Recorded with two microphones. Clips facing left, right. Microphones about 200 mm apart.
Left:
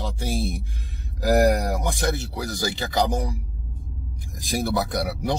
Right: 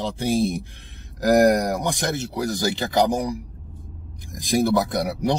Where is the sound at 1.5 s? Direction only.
15° right (ahead or behind).